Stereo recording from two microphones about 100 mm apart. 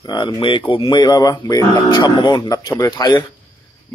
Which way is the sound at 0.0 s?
40° left (ahead or behind).